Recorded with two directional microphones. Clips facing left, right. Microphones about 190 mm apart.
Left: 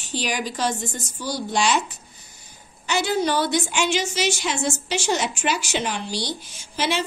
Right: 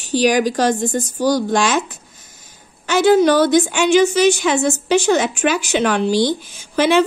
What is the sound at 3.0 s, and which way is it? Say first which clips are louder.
Speech: right 11 dB; 90° right.